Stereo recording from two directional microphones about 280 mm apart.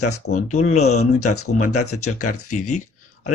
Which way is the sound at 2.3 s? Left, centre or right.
Left.